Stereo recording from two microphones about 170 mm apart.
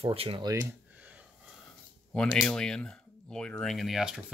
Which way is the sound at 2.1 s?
5° left (ahead or behind).